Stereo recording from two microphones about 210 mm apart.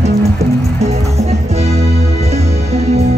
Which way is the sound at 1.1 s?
30° right (ahead or behind).